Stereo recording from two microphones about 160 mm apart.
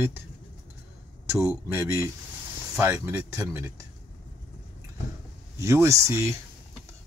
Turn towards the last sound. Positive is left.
turn(degrees=-15)  # may be behind; listen again after turning